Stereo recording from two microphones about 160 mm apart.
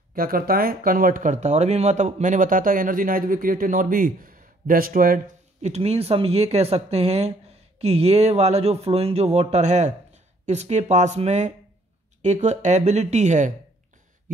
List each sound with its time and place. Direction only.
0.1 s speech: 65° right (ahead or behind); by 13.5 s 45° right (ahead or behind)